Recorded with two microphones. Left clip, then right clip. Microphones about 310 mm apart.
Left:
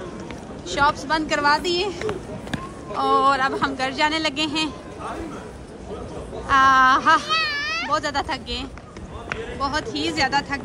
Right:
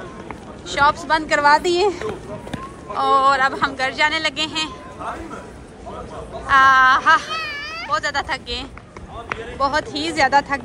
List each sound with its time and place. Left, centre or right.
0.7 s speech: centre
6.4 s speech: centre
7.2 s a sound: centre
7.9 s speech: centre